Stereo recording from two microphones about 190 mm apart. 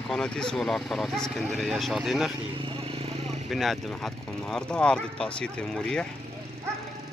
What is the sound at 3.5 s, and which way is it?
Speech, centre (ahead or behind).